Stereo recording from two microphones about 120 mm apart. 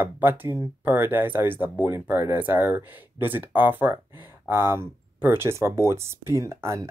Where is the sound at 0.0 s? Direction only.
15° right (ahead or behind).